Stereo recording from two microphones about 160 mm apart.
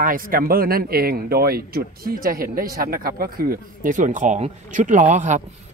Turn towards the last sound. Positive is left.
turn(degrees=-50)  # may be behind; listen again after turning